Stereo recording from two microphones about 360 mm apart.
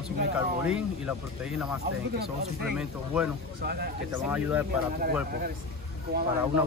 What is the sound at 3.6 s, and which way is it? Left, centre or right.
Speech, right.